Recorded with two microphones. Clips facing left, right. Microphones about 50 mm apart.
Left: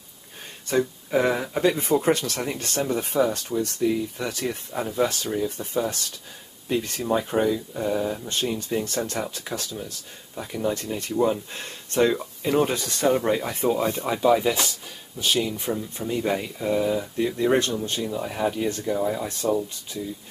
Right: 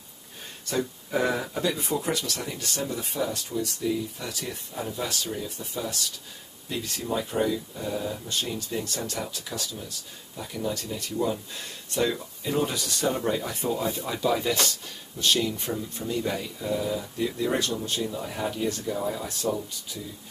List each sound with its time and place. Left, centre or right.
1.1 s speech: centre
1.5 s speech: left
14.1 s speech: left
17.9 s speech: centre